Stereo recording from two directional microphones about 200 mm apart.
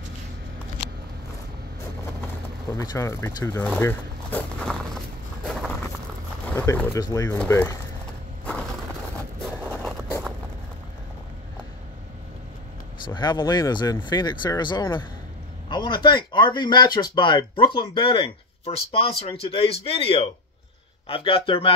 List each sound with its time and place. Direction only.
2.7 s speech: 20° left (ahead or behind)
3.6 s a sound: 10° left (ahead or behind)
6.5 s speech: 15° left (ahead or behind)
9.7 s vehicle: 5° left (ahead or behind)
13.0 s speech: 20° left (ahead or behind)